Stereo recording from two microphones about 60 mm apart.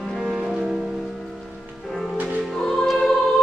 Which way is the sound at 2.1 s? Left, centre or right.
Right.